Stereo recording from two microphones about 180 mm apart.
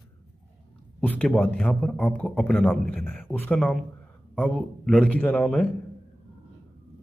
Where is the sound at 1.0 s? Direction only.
5° left (ahead or behind).